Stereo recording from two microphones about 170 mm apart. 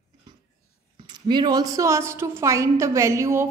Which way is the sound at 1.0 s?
25° right (ahead or behind).